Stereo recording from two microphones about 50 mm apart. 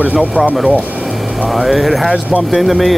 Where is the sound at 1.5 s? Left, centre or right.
Centre.